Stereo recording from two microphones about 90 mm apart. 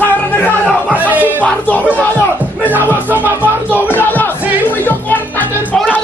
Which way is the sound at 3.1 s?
20° right (ahead or behind).